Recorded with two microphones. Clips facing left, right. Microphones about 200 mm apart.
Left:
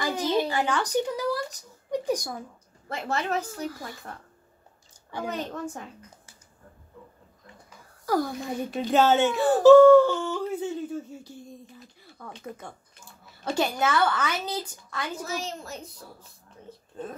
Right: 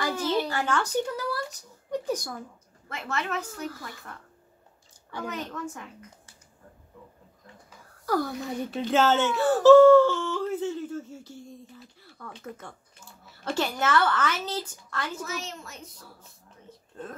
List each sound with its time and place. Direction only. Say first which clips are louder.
0.0 s a sound: left 1 dB; 15° left (ahead or behind)
1.9 s speech: left 2 dB; 15° left (ahead or behind)
2.9 s a child's voice: left 3 dB; 35° left (ahead or behind)
5.2 s a child's voice: left 2 dB; 35° left (ahead or behind)
8.0 s speech: left 1 dB; 10° left (ahead or behind)
15.2 s a child's voice: left 3 dB; 35° left (ahead or behind)